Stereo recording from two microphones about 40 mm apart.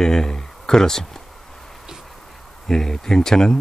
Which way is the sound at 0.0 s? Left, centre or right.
Centre.